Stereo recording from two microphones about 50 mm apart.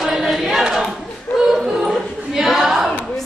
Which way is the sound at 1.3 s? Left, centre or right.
Left.